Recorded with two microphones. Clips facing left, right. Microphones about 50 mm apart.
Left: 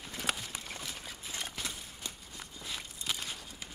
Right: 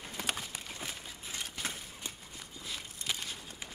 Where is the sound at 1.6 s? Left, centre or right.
Right.